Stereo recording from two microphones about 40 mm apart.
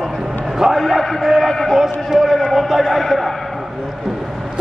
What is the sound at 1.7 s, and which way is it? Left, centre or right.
Speech, centre.